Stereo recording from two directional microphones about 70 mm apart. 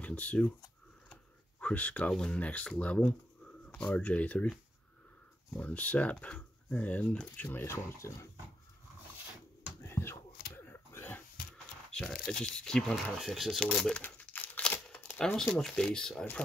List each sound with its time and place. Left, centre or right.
0.0 s speech: centre
1.1 s a sound: centre
2.1 s speech: centre
5.5 s speech: centre
7.5 s speech: left
9.8 s a sound: left
11.5 s speech: centre
12.9 s speech: centre
14.0 s crumpling: left
15.2 s speech: centre